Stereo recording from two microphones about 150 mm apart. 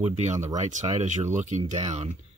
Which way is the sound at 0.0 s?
50° right (ahead or behind).